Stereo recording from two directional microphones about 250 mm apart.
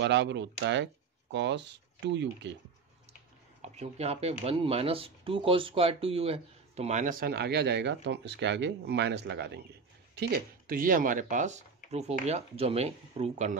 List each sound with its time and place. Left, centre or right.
0.0 s speech: right
3.6 s speech: right